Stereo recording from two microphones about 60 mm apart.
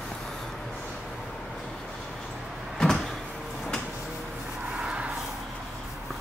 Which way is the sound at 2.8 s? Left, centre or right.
Centre.